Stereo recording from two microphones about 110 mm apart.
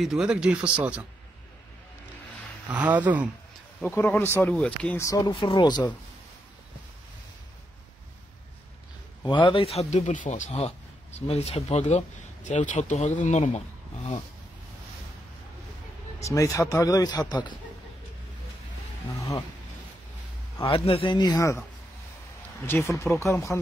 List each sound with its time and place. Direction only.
0.0 s speech: 5° right (ahead or behind)
2.7 s speech: 15° right (ahead or behind)
3.8 s speech: 20° left (ahead or behind)
4.9 s speech: 30° left (ahead or behind)
5.3 s a man's voice: 50° left (ahead or behind)
9.2 s a man's voice: 45° left (ahead or behind); by 12.0 s 70° left (ahead or behind)
12.4 s speech: 90° left
16.2 s speech: 30° left (ahead or behind)
20.6 s a man's voice: 60° left (ahead or behind); by 21.5 s 30° left (ahead or behind)
22.7 s speech: 25° left (ahead or behind)